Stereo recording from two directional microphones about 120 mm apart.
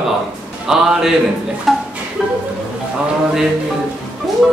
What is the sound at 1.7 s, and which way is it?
Music, centre (ahead or behind).